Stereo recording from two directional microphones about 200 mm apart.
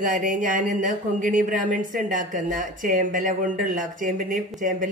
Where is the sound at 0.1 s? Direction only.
40° right (ahead or behind).